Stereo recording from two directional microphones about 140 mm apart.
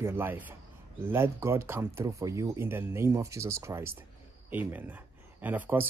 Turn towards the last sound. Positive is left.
turn(degrees=-10)  # may be behind; listen again after turning